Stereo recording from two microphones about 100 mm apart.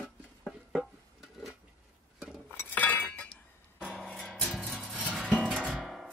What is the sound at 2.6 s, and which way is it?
Chink, 15° left (ahead or behind).